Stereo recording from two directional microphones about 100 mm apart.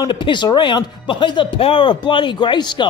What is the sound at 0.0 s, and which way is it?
Speech, 50° left (ahead or behind).